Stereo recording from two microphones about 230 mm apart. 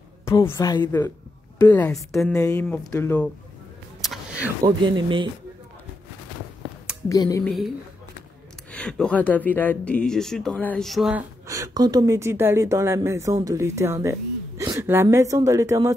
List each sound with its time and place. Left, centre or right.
0.2 s a woman's voice: centre
4.0 s a sound: centre
4.6 s speech: centre
7.1 s a woman's voice: centre
7.4 s speech: centre
8.7 s speech: centre